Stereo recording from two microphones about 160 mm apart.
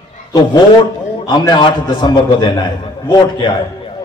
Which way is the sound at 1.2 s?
25° left (ahead or behind).